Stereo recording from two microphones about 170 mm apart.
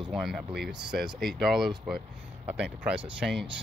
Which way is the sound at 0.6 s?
75° right (ahead or behind).